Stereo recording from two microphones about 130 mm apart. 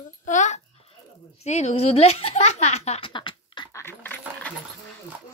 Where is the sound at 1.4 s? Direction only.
60° left (ahead or behind); by 3.7 s 40° left (ahead or behind).